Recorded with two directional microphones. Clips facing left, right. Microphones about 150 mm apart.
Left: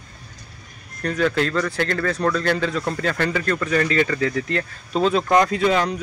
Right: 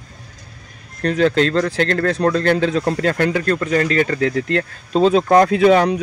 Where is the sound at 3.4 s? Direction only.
35° right (ahead or behind); by 5.9 s 60° right (ahead or behind).